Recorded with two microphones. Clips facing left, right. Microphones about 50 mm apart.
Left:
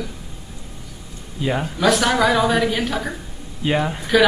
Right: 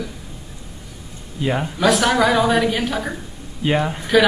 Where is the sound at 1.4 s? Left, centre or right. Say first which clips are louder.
Right 1 dB; centre.